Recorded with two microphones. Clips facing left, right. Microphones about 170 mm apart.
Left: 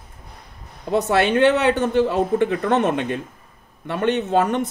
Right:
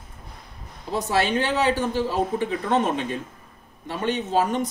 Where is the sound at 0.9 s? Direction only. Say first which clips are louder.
Left 5 dB; 60° left (ahead or behind).